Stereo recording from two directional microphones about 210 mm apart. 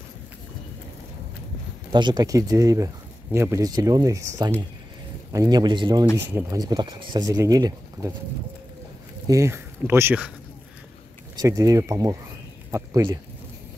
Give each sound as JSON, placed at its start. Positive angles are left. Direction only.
{"t": 1.9, "sound": "a man's voice", "side_deg": -20}
{"t": 9.3, "sound": "speech", "side_deg": -10}
{"t": 11.3, "sound": "speech", "side_deg": -15}